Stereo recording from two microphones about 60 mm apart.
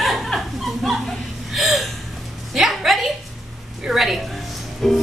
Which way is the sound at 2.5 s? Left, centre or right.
Centre.